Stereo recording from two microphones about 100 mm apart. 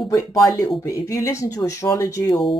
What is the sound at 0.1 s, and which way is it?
Speech, 30° left (ahead or behind).